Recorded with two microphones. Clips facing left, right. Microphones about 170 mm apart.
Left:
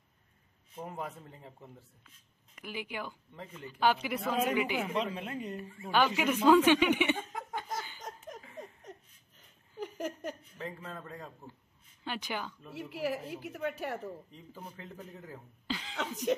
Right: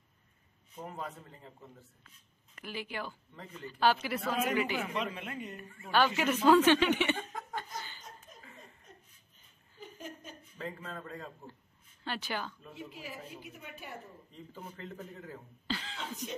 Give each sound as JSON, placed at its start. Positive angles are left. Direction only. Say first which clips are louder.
{"t": 0.8, "sound": "speech", "louder": "left 1 dB", "side_deg": 15}
{"t": 2.5, "sound": "speech", "louder": "even", "side_deg": 15}
{"t": 4.9, "sound": "speech", "louder": "left 3 dB", "side_deg": 30}
{"t": 5.8, "sound": "speech", "louder": "even", "side_deg": 15}
{"t": 8.0, "sound": "laughter", "louder": "left 8 dB", "side_deg": 90}
{"t": 9.8, "sound": "a sound", "louder": "left 9 dB", "side_deg": 85}
{"t": 10.6, "sound": "speech", "louder": "right 2 dB", "side_deg": 5}
{"t": 12.7, "sound": "a woman's voice", "louder": "left 13 dB", "side_deg": 80}
{"t": 14.3, "sound": "speech", "louder": "right 1 dB", "side_deg": 10}
{"t": 15.6, "sound": "cough", "louder": "even", "side_deg": 10}
{"t": 16.0, "sound": "a woman's voice", "louder": "left 9 dB", "side_deg": 80}